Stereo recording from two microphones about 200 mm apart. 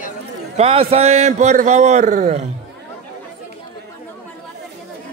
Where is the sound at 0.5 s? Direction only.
30° right (ahead or behind).